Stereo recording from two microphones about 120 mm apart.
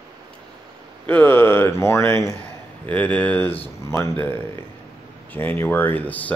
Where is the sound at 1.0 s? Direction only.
15° left (ahead or behind).